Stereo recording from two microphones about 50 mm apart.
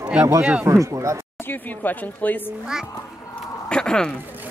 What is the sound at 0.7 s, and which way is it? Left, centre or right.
Speech, right.